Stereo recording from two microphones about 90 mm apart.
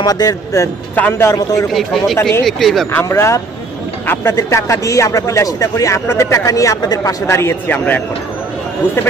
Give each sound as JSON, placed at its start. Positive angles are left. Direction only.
{"t": 0.0, "sound": "speech", "side_deg": 45}
{"t": 0.9, "sound": "a man's voice", "side_deg": 25}
{"t": 1.7, "sound": "speech", "side_deg": 0}
{"t": 2.9, "sound": "speech", "side_deg": 30}